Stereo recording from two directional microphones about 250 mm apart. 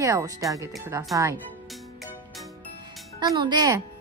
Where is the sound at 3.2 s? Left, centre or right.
Centre.